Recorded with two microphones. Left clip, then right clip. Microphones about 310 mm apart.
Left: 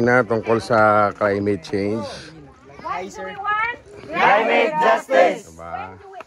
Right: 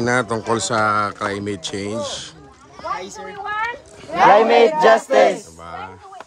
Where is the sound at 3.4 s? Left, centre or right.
Right.